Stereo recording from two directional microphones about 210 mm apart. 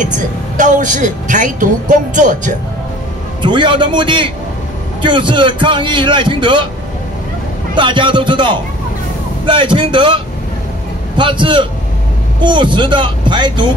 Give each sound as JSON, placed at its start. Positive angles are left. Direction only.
{"t": 0.6, "sound": "speech", "side_deg": -35}
{"t": 3.4, "sound": "a man's voice", "side_deg": -25}
{"t": 7.7, "sound": "a man's voice", "side_deg": -20}